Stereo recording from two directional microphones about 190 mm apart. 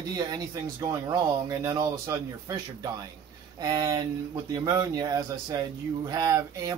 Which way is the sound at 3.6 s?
15° right (ahead or behind).